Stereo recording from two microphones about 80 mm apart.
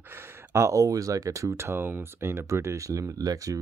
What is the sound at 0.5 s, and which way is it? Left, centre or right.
Speech, right.